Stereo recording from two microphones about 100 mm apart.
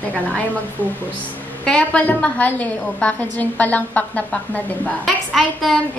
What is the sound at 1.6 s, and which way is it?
A woman's voice, 10° left (ahead or behind).